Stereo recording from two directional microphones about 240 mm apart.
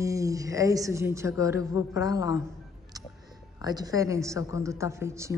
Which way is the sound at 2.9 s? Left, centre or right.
Centre.